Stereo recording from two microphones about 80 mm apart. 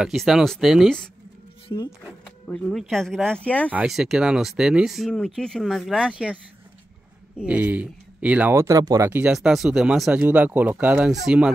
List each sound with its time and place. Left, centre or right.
0.0 s speech: centre
1.7 s speech: left
2.7 s speech: centre
3.4 s speech: centre
3.8 s speech: centre
5.1 s speech: centre
8.5 s speech: right
9.3 s speech: centre
11.1 s speech: centre